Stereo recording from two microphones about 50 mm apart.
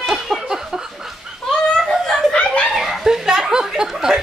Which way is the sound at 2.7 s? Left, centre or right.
Centre.